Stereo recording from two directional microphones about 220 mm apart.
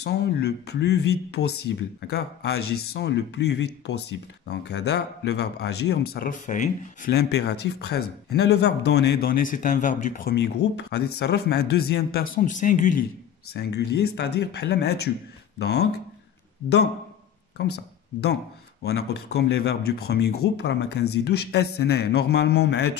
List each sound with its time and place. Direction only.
0.0 s speech: 50° left (ahead or behind)
13.5 s speech: 50° left (ahead or behind)